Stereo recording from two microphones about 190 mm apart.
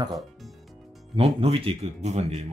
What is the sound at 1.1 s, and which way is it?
A man's voice, 30° right (ahead or behind).